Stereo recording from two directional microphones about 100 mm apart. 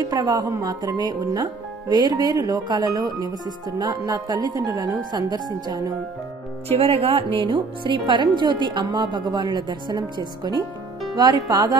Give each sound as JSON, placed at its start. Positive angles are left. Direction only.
{"t": 0.0, "sound": "speech", "side_deg": -40}
{"t": 6.7, "sound": "speech", "side_deg": -70}
{"t": 7.3, "sound": "a woman's voice", "side_deg": -55}